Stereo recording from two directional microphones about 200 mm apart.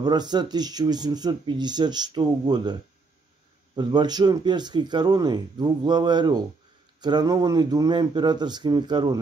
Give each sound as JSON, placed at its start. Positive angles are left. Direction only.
{"t": 0.0, "sound": "speech", "side_deg": -20}